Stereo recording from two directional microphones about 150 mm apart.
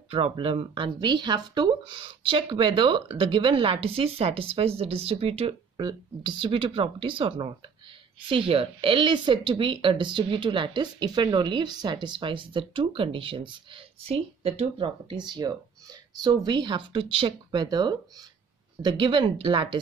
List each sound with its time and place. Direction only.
0.1 s speech: 35° right (ahead or behind)